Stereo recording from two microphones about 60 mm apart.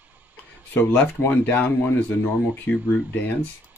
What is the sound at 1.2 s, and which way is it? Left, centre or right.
Speech, left.